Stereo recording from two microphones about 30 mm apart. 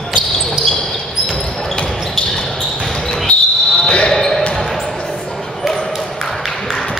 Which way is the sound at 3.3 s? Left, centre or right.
Left.